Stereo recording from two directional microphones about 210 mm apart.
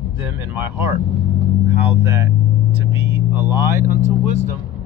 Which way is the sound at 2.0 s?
10° right (ahead or behind).